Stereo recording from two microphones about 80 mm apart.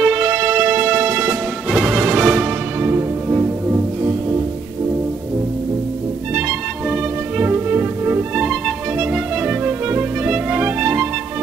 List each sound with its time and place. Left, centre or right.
0.0 s music: centre
2.1 s music: centre
2.8 s music: right
7.3 s music: centre
8.4 s music: centre
8.9 s music: centre
9.7 s music: right